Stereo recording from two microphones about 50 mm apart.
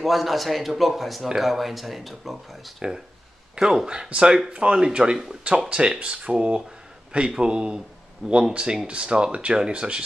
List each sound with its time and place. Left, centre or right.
0.0 s speech: centre
3.5 s speech: centre
5.1 s speech: centre